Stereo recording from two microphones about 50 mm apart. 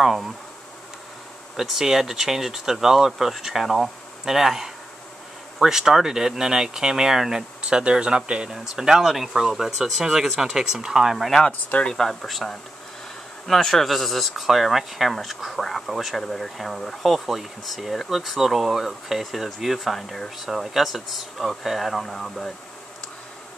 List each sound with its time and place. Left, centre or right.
0.0 s speech: centre
1.6 s speech: centre
11.1 s speech: centre